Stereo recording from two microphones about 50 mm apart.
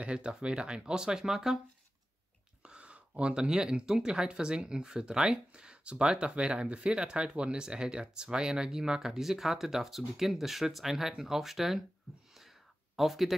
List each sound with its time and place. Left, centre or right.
0.0 s speech: centre
2.6 s speech: right
12.9 s speech: centre